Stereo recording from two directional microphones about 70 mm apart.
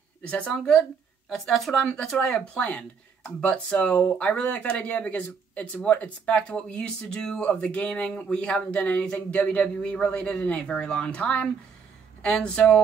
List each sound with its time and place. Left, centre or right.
0.3 s speech: centre
1.3 s a woman's voice: centre